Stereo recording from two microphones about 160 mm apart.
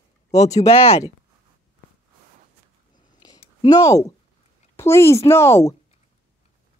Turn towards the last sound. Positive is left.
turn(degrees=15)  # may be behind; listen again after turning